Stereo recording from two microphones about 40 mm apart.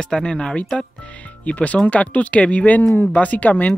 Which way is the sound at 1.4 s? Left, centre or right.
Left.